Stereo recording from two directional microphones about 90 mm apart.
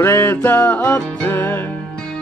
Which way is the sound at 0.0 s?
25° left (ahead or behind).